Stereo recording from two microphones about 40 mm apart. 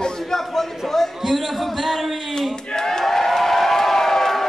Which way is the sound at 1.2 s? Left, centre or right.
Centre.